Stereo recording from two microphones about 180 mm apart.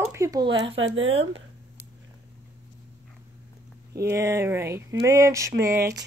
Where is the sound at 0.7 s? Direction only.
90° right.